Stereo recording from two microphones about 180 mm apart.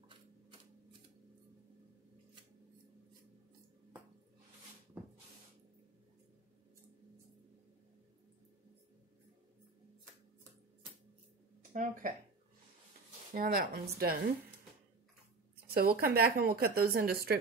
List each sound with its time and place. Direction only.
11.7 s speech: 50° right (ahead or behind)
13.3 s speech: 50° right (ahead or behind)
15.6 s a woman's voice: 60° right (ahead or behind)